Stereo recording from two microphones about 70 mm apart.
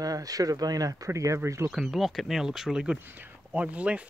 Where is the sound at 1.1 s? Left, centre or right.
Right.